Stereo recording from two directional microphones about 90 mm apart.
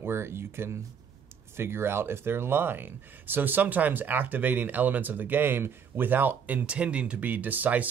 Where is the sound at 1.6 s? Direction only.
25° right (ahead or behind).